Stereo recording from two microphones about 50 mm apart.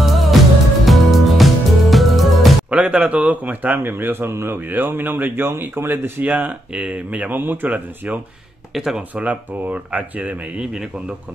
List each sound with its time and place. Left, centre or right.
0.0 s music: centre
2.7 s speech: right
6.2 s speech: right
7.3 s speech: right
8.7 s speech: centre
9.1 s speech: right
10.6 s a man's voice: centre